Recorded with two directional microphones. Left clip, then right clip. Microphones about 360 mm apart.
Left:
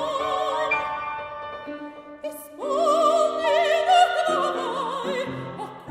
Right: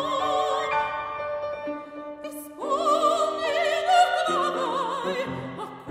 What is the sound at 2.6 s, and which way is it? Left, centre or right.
Opera, centre.